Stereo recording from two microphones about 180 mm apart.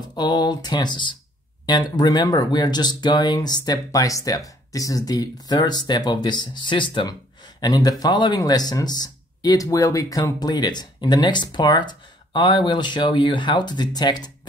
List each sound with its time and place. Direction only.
0.1 s speech: 25° left (ahead or behind)